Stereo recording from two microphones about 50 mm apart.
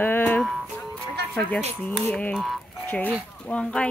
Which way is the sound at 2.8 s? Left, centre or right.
Left.